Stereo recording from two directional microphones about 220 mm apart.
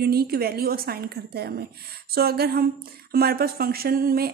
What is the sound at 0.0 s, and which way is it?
A woman's voice, 45° right (ahead or behind).